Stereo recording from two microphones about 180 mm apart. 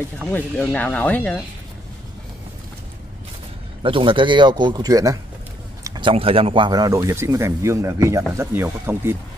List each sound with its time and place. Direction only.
0.3 s speech: 10° left (ahead or behind)
3.8 s speech: 30° right (ahead or behind); by 9.1 s 10° right (ahead or behind)